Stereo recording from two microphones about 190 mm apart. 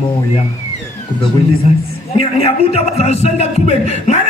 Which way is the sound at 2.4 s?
35° left (ahead or behind).